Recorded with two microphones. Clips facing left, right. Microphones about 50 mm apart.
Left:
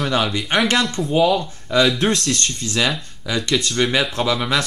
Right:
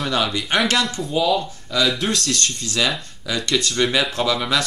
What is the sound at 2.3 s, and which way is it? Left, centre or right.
Speech, centre.